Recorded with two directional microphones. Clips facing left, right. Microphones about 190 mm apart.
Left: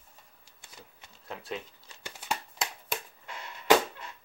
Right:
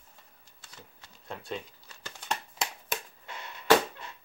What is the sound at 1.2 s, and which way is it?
Speech, centre (ahead or behind).